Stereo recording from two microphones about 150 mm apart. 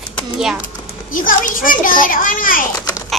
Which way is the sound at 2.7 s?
20° left (ahead or behind).